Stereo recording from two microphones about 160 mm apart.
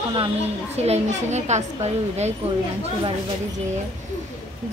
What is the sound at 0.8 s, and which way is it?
Speech, 45° right (ahead or behind).